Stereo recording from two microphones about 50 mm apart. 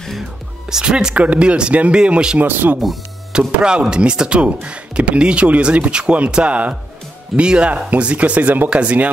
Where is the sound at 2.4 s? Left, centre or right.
Right.